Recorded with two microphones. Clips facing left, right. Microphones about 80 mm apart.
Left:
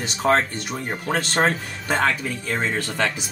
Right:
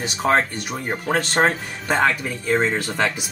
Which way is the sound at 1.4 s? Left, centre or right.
Centre.